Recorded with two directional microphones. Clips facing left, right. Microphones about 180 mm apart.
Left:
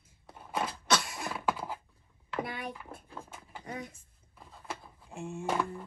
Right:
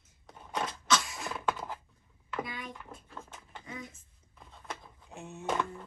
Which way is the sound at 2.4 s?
60° left (ahead or behind).